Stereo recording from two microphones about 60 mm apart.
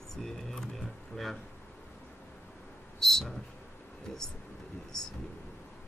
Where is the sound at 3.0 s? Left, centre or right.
Centre.